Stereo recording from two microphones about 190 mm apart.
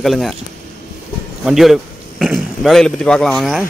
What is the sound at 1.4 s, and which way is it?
A man's voice, centre (ahead or behind).